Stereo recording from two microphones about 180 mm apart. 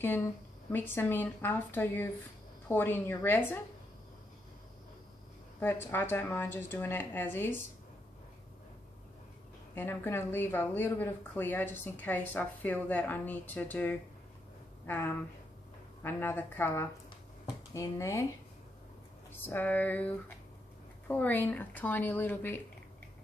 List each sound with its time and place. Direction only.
0.7 s speech: 10° left (ahead or behind)
5.6 s speech: 10° left (ahead or behind)
9.8 s speech: 15° left (ahead or behind)
19.4 s speech: 10° left (ahead or behind)
21.1 s speech: 10° left (ahead or behind)